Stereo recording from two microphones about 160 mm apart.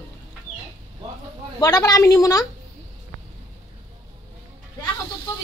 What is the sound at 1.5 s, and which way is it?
Speech, 25° left (ahead or behind).